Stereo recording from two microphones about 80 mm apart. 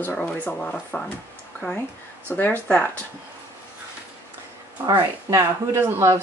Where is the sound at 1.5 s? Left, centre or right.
Left.